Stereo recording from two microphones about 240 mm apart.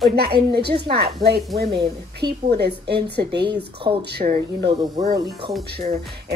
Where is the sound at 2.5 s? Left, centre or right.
Right.